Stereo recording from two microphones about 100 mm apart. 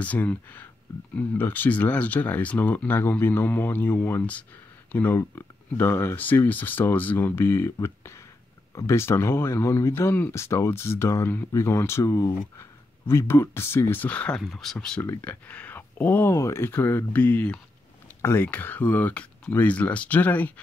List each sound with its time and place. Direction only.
0.0 s speech: 15° left (ahead or behind)
15.2 s speech: 15° left (ahead or behind)
16.3 s speech: 30° left (ahead or behind)